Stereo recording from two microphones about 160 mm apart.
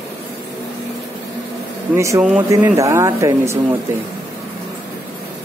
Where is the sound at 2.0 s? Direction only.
20° right (ahead or behind).